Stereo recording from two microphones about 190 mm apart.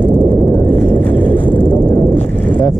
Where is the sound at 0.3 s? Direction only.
10° left (ahead or behind).